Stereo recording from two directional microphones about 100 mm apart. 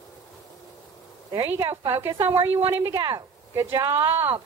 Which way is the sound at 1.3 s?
45° right (ahead or behind).